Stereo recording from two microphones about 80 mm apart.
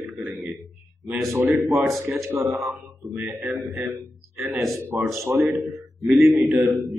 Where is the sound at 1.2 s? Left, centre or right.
Right.